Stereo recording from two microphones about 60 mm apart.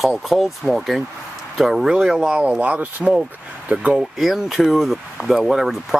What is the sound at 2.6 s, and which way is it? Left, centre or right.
Speech, right.